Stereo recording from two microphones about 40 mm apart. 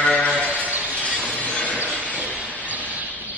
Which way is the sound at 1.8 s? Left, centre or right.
Right.